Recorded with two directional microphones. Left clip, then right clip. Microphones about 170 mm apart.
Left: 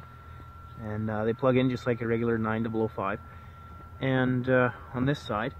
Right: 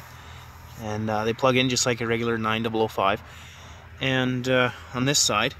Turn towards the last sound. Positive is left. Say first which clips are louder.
# right 8 dB
turn(degrees=-10)  # may be behind; listen again after turning